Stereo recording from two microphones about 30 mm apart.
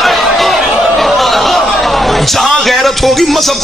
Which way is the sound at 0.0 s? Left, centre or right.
Centre.